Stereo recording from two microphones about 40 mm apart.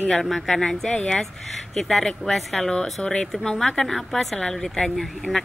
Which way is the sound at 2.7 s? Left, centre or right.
Centre.